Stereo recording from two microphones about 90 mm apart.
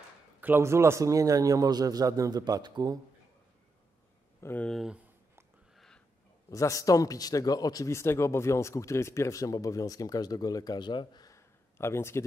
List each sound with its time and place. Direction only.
0.4 s a man's voice: 25° right (ahead or behind); by 3.0 s 50° right (ahead or behind)
4.4 s speech: 30° left (ahead or behind)
6.5 s speech: 35° left (ahead or behind); by 11.2 s 55° left (ahead or behind)
11.2 s a sound: 30° left (ahead or behind)